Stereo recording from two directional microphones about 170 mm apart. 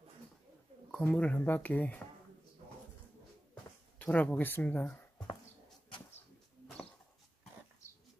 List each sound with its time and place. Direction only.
0.9 s speech: 5° left (ahead or behind)
4.0 s speech: 10° left (ahead or behind)
5.9 s bird: 30° left (ahead or behind)